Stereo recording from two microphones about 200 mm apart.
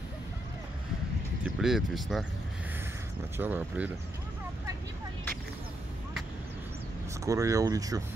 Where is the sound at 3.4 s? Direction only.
10° right (ahead or behind).